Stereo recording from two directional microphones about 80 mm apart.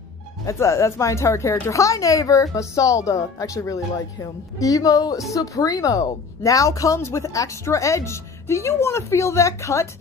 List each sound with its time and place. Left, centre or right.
0.5 s speech: left